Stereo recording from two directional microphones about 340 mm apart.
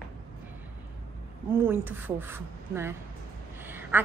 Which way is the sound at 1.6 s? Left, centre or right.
Centre.